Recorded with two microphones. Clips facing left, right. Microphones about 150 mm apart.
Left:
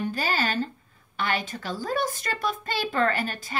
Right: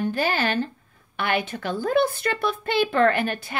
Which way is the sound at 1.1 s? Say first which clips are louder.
Right 3 dB; 60° right (ahead or behind).